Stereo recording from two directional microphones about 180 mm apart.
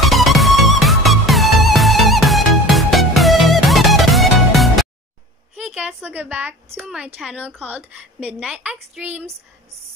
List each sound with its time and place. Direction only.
0.0 s music: centre (ahead or behind)
5.6 s a sound: centre (ahead or behind)
6.8 s a woman's voice: 5° right (ahead or behind)